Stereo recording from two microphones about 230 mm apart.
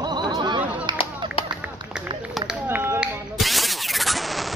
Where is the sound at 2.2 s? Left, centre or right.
Centre.